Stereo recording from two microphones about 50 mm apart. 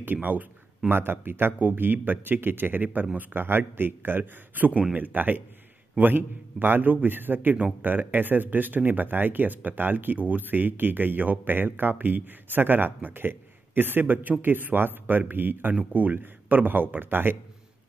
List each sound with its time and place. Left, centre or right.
0.0 s speech: right